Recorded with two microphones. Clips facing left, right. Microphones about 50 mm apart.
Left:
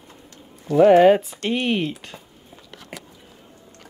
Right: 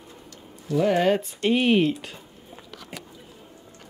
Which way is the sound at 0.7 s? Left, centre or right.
Left.